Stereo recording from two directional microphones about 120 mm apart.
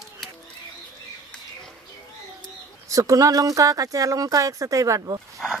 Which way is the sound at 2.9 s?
30° right (ahead or behind).